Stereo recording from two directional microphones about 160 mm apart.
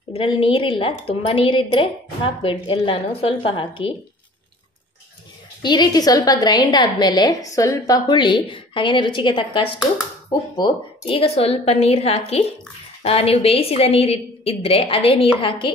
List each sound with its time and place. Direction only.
0.1 s a woman's voice: 35° left (ahead or behind)
5.6 s a woman's voice: 25° left (ahead or behind)